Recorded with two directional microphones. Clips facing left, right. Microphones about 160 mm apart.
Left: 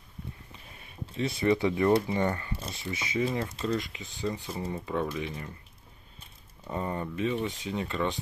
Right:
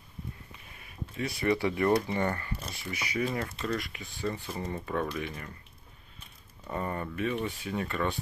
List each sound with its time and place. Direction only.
0.5 s speech: 25° left (ahead or behind); by 5.0 s 10° left (ahead or behind)
5.1 s speech: 25° left (ahead or behind)
6.7 s speech: 15° left (ahead or behind)